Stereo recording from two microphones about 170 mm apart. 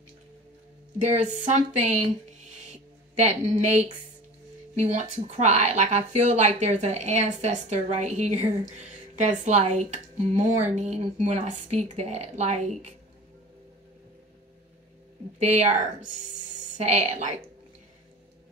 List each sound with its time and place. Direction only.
1.0 s speech: 40° right (ahead or behind)
15.3 s speech: 40° right (ahead or behind)